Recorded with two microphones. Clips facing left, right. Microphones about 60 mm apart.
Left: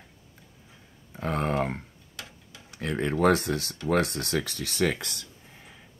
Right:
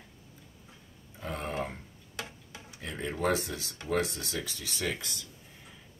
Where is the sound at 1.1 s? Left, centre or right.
Left.